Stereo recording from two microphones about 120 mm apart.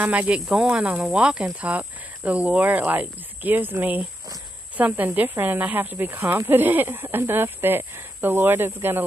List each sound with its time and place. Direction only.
0.0 s speech: 10° right (ahead or behind)